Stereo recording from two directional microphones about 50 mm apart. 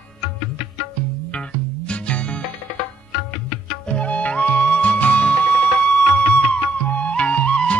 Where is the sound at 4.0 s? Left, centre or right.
Left.